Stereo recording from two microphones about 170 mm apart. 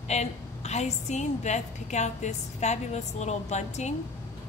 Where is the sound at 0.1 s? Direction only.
40° left (ahead or behind).